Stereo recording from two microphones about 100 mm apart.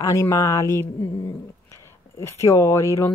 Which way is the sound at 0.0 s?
35° left (ahead or behind).